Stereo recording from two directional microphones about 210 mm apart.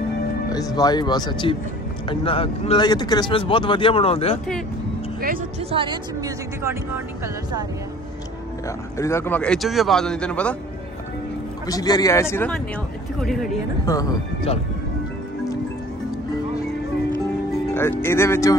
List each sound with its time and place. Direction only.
0.5 s speech: 15° left (ahead or behind)
5.6 s speech: 25° right (ahead or behind)
8.6 s speech: 15° left (ahead or behind)
11.6 s speech: 20° left (ahead or behind); by 13.5 s centre (ahead or behind)
13.8 s speech: 15° left (ahead or behind)
17.7 s speech: 10° left (ahead or behind)